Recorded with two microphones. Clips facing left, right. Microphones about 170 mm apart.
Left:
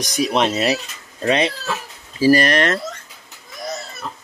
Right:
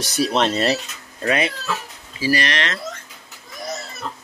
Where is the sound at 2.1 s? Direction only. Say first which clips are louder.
Left 7 dB; 45° left (ahead or behind).